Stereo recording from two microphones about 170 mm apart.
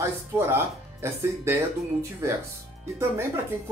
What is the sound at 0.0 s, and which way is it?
Speech, 15° right (ahead or behind).